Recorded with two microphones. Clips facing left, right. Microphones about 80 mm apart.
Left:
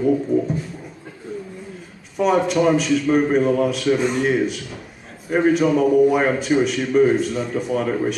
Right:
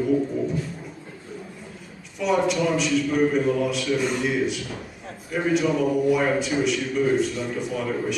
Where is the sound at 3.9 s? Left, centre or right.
Left.